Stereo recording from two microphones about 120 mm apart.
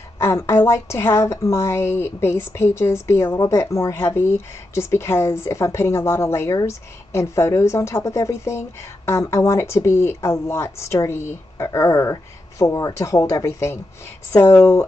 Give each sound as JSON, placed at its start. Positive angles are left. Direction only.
{"t": 0.2, "sound": "a woman's voice", "side_deg": 25}